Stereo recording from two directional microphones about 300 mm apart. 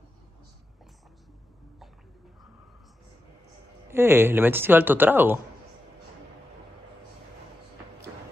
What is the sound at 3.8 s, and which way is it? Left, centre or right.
A woman's voice, centre.